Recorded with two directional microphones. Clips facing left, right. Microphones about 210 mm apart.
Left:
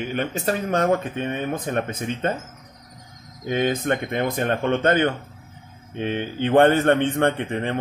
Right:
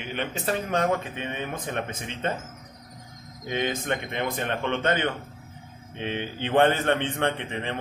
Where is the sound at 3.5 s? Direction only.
45° left (ahead or behind).